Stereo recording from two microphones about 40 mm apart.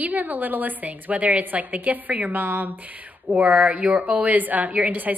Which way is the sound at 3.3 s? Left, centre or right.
Right.